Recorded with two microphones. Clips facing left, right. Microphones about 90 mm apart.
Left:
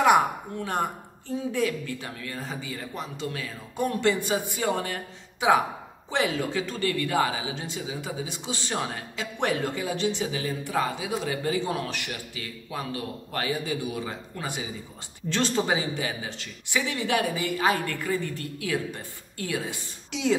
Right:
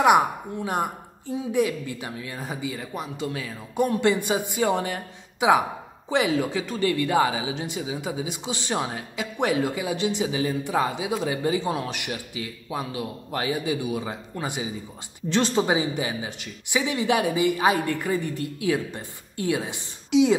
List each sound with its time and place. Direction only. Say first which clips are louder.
0.0 s a woman's voice: right 2 dB; 15° right (ahead or behind)